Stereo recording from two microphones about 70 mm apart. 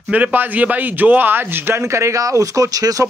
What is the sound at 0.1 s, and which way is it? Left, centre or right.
A man's voice, right.